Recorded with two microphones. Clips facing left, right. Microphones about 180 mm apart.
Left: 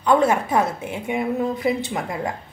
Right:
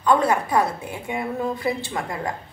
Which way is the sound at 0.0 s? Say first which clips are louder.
Left 2 dB; 25° left (ahead or behind).